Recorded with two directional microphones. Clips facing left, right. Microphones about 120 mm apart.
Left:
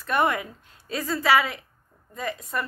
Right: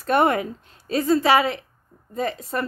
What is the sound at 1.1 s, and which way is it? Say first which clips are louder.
A woman's voice: right 4 dB; 25° right (ahead or behind).